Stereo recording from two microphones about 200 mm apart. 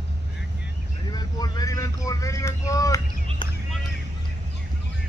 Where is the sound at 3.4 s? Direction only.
25° left (ahead or behind).